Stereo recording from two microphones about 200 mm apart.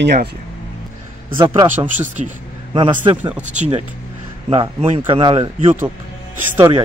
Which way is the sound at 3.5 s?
35° right (ahead or behind).